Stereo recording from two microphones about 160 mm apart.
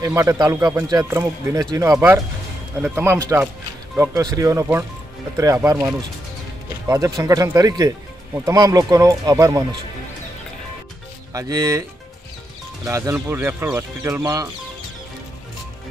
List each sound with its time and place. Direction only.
0.0 s a man's voice: 20° right (ahead or behind)
11.3 s a man's voice: 20° right (ahead or behind)
12.8 s speech: 15° right (ahead or behind)